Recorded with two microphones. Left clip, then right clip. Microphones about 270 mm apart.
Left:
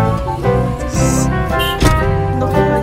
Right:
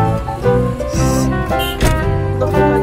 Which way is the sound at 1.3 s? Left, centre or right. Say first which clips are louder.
Left 1 dB; centre.